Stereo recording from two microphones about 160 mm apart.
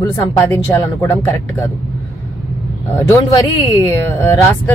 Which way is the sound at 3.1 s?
20° left (ahead or behind).